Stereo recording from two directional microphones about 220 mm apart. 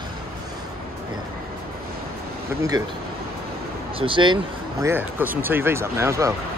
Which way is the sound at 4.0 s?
20° right (ahead or behind).